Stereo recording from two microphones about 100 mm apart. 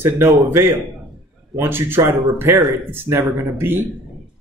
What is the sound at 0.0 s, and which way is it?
Speech, 25° right (ahead or behind).